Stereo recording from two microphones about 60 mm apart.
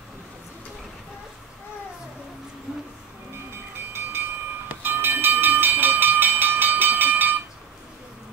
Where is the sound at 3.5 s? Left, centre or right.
Right.